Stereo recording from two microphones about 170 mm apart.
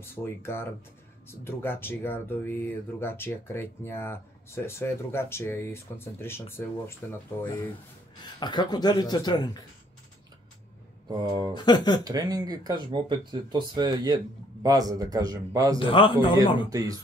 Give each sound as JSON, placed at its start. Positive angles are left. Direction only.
{"t": 0.0, "sound": "speech", "side_deg": 15}
{"t": 8.4, "sound": "speech", "side_deg": 25}
{"t": 11.1, "sound": "speech", "side_deg": -25}
{"t": 11.5, "sound": "speech", "side_deg": 25}
{"t": 12.0, "sound": "speech", "side_deg": -20}
{"t": 15.8, "sound": "a man's voice", "side_deg": 30}
{"t": 16.7, "sound": "speech", "side_deg": -20}